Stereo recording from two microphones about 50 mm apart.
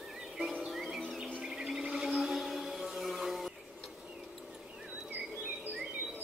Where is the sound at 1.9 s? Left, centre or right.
Centre.